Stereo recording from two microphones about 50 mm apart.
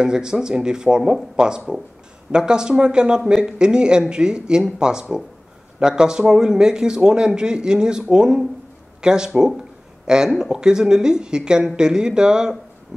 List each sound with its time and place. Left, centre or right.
0.0 s a man's voice: centre